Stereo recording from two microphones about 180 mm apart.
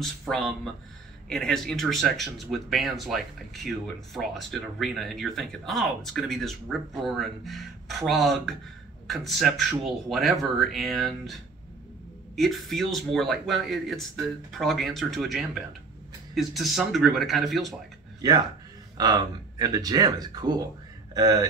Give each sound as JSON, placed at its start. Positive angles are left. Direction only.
{"t": 0.0, "sound": "speech", "side_deg": 0}
{"t": 12.4, "sound": "speech", "side_deg": 0}
{"t": 18.9, "sound": "speech", "side_deg": -20}